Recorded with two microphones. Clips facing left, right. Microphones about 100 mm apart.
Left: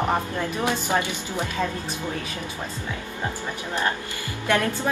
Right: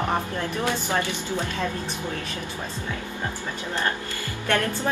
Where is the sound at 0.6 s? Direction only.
15° left (ahead or behind).